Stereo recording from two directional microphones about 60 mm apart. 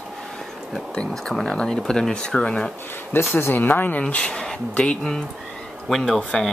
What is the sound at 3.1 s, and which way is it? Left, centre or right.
Speech, left.